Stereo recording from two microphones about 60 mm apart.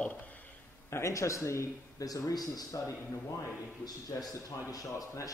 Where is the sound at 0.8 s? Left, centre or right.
Left.